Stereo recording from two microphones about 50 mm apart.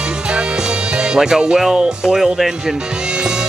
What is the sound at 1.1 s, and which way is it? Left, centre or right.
Speech, centre.